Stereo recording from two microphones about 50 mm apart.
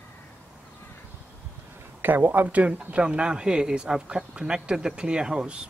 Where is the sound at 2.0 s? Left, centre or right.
Right.